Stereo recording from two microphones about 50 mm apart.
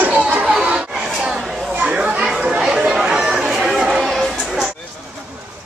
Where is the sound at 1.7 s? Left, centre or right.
Right.